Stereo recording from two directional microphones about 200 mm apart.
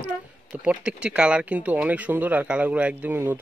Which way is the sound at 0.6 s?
5° right (ahead or behind).